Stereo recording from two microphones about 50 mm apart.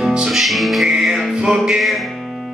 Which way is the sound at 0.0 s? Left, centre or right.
Centre.